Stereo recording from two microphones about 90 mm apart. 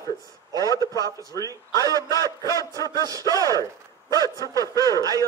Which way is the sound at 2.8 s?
40° left (ahead or behind).